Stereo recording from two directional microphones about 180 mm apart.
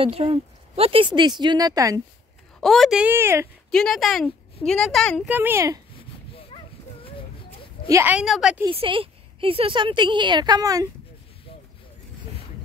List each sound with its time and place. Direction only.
0.0 s a woman's voice: 30° right (ahead or behind)
2.6 s a woman's voice: centre (ahead or behind)
3.7 s a woman's voice: 5° left (ahead or behind)
5.3 s a woman's voice: 10° right (ahead or behind)
6.3 s a sound: 30° left (ahead or behind)
7.9 s a woman's voice: 10° right (ahead or behind)
8.6 s a woman's voice: 30° right (ahead or behind)